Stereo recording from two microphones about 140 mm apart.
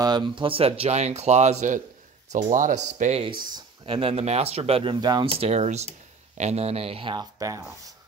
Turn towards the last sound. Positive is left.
turn(degrees=-25)  # may be behind; listen again after turning